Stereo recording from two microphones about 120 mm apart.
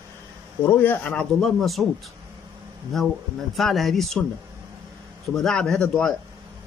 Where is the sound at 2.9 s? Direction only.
Centre (ahead or behind).